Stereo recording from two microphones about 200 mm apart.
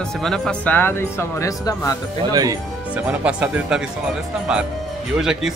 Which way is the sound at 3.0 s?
5° right (ahead or behind).